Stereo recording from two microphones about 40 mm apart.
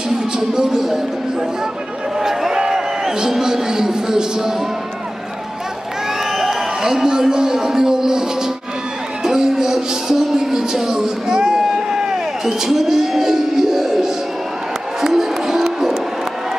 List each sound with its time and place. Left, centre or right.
0.4 s speech: centre
2.1 s a man's voice: centre
6.3 s a man's voice: centre
15.0 s music: centre